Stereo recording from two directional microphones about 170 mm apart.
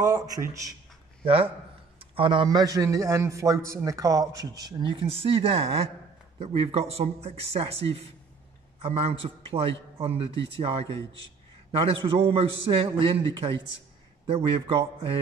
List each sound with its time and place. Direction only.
0.0 s a man's voice: 20° right (ahead or behind)
1.2 s a man's voice: 30° right (ahead or behind)